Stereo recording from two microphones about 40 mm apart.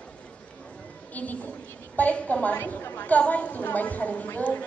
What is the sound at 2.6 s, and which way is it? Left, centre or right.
Speech, left.